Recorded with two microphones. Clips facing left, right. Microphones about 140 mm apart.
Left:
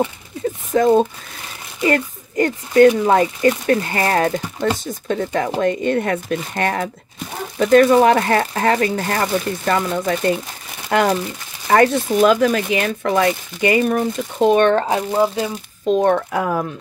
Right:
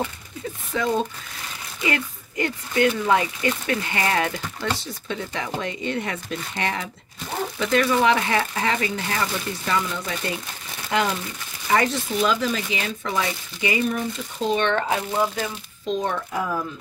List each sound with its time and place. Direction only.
0.7 s speech: 45° left (ahead or behind)
14.7 s speech: 30° left (ahead or behind)
15.8 s speech: 55° left (ahead or behind)